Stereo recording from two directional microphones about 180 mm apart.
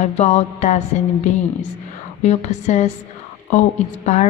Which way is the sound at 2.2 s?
40° left (ahead or behind).